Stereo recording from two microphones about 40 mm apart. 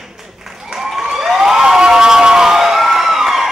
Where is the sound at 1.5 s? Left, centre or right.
Centre.